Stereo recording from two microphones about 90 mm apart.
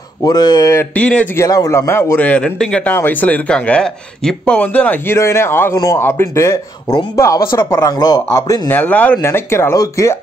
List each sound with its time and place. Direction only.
0.2 s speech: 50° left (ahead or behind)
0.9 s speech: 15° left (ahead or behind)
1.3 s a man's voice: 40° left (ahead or behind); by 2.8 s 10° left (ahead or behind)
2.8 s speech: 20° left (ahead or behind)
5.1 s a man's voice: 30° left (ahead or behind)
7.9 s speech: 45° left (ahead or behind)
8.6 s a man's voice: 20° left (ahead or behind)
9.2 s speech: 30° left (ahead or behind)